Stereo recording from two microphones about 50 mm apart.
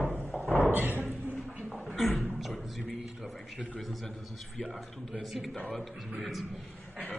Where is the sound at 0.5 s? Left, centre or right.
Left.